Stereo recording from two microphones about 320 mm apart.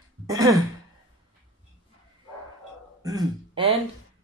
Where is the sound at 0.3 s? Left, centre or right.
Centre.